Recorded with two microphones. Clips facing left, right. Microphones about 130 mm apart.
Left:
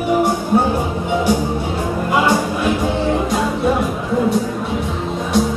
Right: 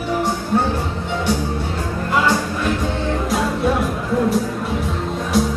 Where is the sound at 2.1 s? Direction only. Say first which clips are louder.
Left 2 dB; 10° left (ahead or behind).